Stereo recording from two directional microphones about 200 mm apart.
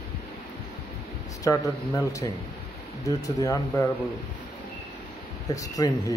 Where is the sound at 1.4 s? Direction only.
15° left (ahead or behind).